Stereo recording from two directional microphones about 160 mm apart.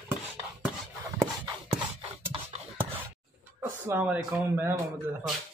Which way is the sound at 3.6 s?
10° right (ahead or behind).